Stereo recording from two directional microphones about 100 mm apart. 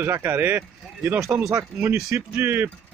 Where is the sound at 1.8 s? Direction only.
25° right (ahead or behind).